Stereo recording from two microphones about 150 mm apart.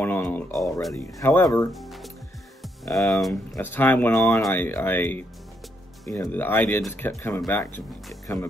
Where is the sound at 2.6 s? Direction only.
Centre (ahead or behind).